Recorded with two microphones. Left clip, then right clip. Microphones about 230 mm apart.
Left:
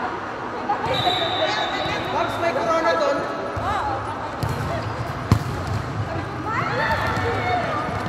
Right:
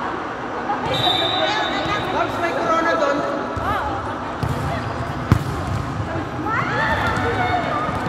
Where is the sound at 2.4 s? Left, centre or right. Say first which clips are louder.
Even; left.